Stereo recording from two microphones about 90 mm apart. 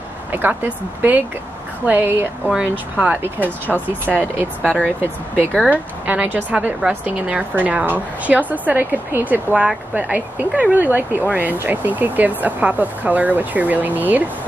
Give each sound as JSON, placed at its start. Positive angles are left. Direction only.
{"t": 0.3, "sound": "speech", "side_deg": -20}
{"t": 4.6, "sound": "speech", "side_deg": 10}
{"t": 5.0, "sound": "a woman's voice", "side_deg": -20}